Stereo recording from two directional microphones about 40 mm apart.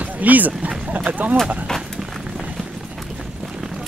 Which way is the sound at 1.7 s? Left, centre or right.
Centre.